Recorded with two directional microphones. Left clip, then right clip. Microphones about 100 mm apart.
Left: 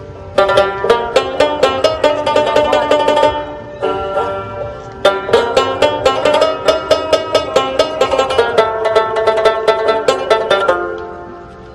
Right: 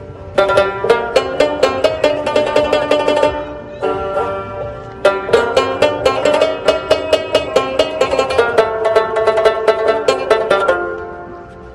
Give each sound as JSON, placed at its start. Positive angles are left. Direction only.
{"t": 0.4, "sound": "music", "side_deg": 35}